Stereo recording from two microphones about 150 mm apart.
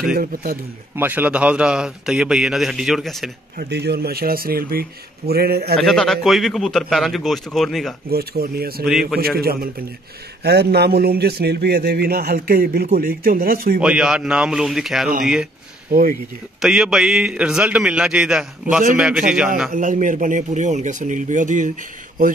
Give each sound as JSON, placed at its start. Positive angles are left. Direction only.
{"t": 0.1, "sound": "speech", "side_deg": -75}
{"t": 0.9, "sound": "a man's voice", "side_deg": -10}
{"t": 3.5, "sound": "speech", "side_deg": -90}
{"t": 5.8, "sound": "a man's voice", "side_deg": 0}
{"t": 8.1, "sound": "speech", "side_deg": -90}
{"t": 13.7, "sound": "a man's voice", "side_deg": -5}
{"t": 15.9, "sound": "speech", "side_deg": -65}
{"t": 16.6, "sound": "a man's voice", "side_deg": -5}
{"t": 19.7, "sound": "speech", "side_deg": -60}